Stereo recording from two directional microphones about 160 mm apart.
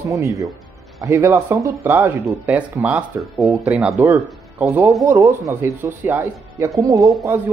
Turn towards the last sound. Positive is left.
turn(degrees=-20)  # may be behind; listen again after turning